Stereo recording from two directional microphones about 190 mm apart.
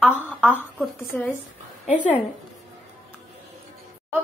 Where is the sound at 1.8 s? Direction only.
40° left (ahead or behind).